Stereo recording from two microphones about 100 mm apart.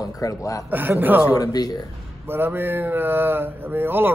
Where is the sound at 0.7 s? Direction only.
20° right (ahead or behind).